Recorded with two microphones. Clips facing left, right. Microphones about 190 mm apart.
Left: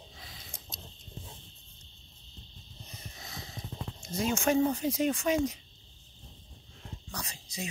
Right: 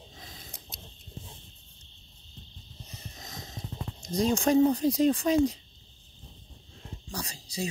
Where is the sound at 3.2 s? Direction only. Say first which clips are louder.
Right 1 dB; 40° right (ahead or behind).